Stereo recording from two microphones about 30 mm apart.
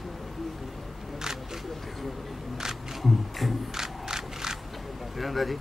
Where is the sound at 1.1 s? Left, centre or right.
Centre.